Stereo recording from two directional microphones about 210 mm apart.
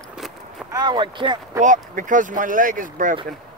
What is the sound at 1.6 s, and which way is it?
Speech, 40° right (ahead or behind).